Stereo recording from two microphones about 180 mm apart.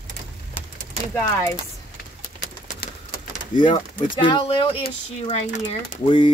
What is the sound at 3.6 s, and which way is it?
Speech, 25° left (ahead or behind).